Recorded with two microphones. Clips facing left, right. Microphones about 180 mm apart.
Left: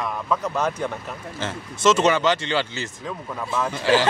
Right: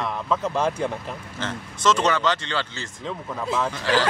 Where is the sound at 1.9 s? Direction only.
10° left (ahead or behind).